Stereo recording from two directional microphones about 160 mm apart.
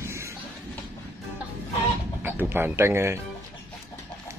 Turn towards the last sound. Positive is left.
turn(degrees=-15)  # may be behind; listen again after turning